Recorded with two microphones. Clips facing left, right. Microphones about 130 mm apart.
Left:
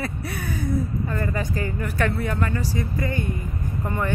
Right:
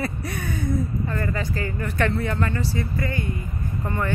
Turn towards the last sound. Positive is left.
turn(degrees=15)  # may be behind; listen again after turning